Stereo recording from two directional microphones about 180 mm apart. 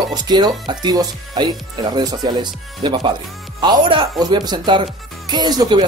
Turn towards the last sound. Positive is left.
turn(degrees=-25)  # may be behind; listen again after turning